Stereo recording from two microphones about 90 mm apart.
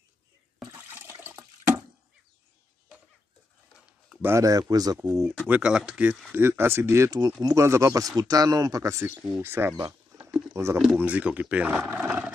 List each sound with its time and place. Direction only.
0.8 s toilet flush: 25° right (ahead or behind)
4.4 s speech: 40° right (ahead or behind)
5.5 s speech: 10° right (ahead or behind)
6.3 s speech: 25° right (ahead or behind)
7.1 s speech: 45° right (ahead or behind)
7.4 s speech: 35° right (ahead or behind)
10.2 s a sound: 35° right (ahead or behind)
11.0 s speech: 15° right (ahead or behind)
11.9 s a sound: 15° right (ahead or behind)